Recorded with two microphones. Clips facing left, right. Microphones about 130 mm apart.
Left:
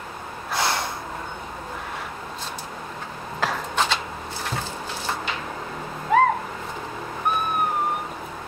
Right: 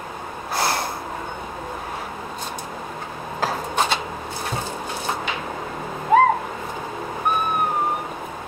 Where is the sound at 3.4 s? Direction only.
45° right (ahead or behind).